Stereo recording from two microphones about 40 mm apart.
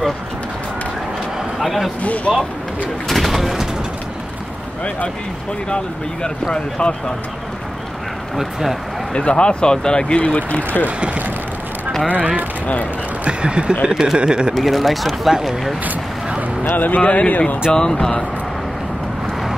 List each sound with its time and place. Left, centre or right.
1.6 s a man's voice: centre
6.5 s speech: left
8.4 s speech: centre
9.1 s speech: left
11.0 s a sound: right
13.2 s speech: right
14.5 s speech: centre
16.7 s speech: left
17.6 s speech: centre